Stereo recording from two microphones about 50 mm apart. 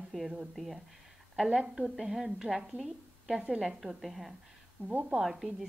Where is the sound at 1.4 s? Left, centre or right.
Centre.